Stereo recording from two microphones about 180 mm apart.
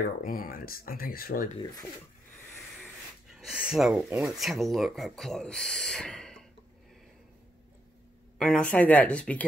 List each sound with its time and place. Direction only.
0.2 s speech: 50° left (ahead or behind)
2.8 s speech: centre (ahead or behind)
8.4 s speech: 5° left (ahead or behind)